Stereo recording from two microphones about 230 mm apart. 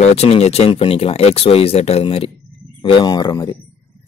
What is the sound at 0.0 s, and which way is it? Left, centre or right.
Speech, left.